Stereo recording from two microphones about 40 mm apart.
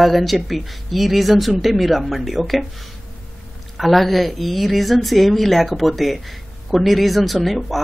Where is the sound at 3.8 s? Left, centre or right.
Centre.